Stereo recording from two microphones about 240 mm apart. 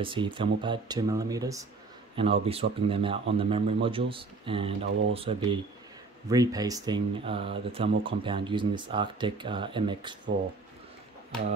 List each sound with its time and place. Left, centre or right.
0.0 s speech: right